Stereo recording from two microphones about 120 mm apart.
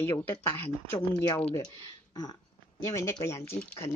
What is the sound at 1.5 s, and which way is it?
Speech, 35° left (ahead or behind).